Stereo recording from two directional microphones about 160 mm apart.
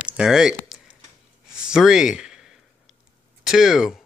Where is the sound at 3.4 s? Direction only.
5° right (ahead or behind).